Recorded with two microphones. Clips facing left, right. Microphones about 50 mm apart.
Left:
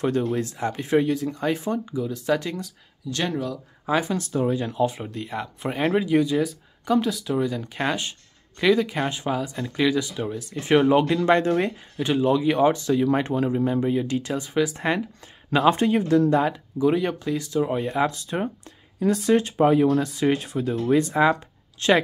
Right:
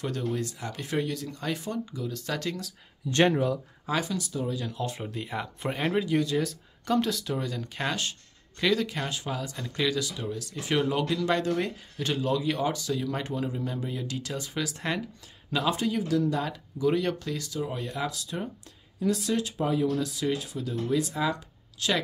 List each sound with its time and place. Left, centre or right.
0.0 s speech: left; by 2.7 s centre
3.1 s speech: right
4.0 s speech: left
4.7 s speech: centre
5.1 s speech: centre; by 11.7 s left
12.0 s speech: left
15.5 s speech: left
16.4 s speech: left
17.6 s speech: left